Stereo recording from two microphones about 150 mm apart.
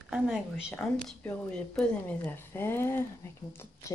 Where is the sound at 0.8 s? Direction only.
20° left (ahead or behind).